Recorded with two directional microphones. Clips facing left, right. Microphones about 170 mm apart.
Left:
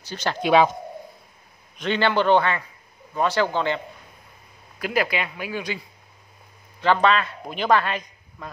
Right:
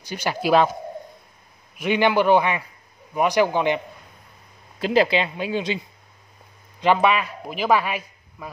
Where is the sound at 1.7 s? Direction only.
10° right (ahead or behind).